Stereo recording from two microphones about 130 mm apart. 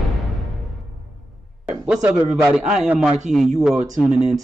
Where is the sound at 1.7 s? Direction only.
10° right (ahead or behind).